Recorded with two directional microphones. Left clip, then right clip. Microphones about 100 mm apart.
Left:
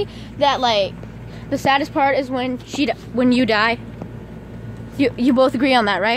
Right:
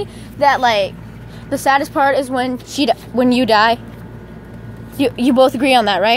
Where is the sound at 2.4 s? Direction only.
15° right (ahead or behind).